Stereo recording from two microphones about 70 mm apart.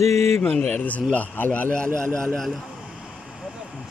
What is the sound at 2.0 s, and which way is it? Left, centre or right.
Speech, centre.